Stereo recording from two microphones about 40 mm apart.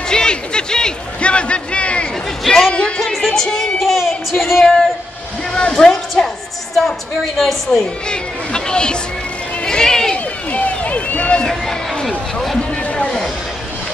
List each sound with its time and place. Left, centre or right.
0.1 s a sound: left
1.2 s a sound: left
2.4 s a sound: centre
3.0 s music: centre
3.4 s speech: centre
3.8 s a sound: centre
5.7 s music: centre
7.3 s a woman's voice: centre
8.1 s speech: left
9.7 s run: centre
10.1 s run: left
11.4 s speech: centre